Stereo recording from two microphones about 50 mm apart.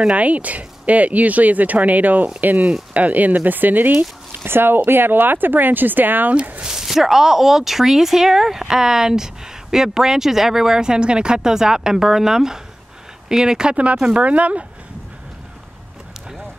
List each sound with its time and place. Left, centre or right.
0.1 s speech: right
4.5 s speech: right
6.6 s speech: centre
14.1 s speech: right